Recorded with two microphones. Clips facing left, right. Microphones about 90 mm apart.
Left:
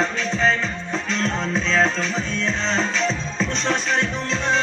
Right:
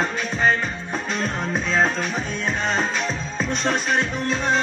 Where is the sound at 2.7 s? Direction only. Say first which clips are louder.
Left 2 dB; 10° right (ahead or behind).